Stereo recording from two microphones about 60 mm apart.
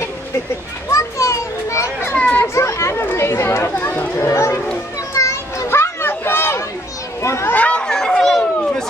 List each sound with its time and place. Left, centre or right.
0.8 s children playing: left
3.2 s chatter: left
4.3 s children playing: left
7.2 s children playing: left
7.5 s chatter: left
7.8 s a sound: centre